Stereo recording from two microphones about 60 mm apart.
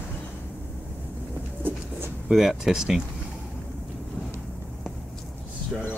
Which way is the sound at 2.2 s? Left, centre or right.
Centre.